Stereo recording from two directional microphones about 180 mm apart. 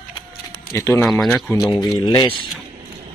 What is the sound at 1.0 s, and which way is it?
Speech, 5° left (ahead or behind).